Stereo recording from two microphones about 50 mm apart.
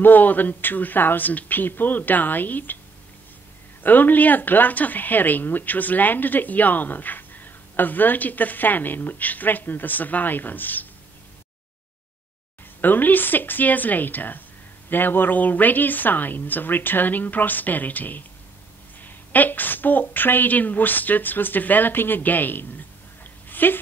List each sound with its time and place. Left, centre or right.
0.0 s a woman's voice: left
3.8 s a woman's voice: left
12.8 s a woman's voice: left
23.5 s a sound: left